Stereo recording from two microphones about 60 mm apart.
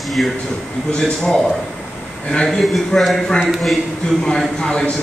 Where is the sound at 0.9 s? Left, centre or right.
Centre.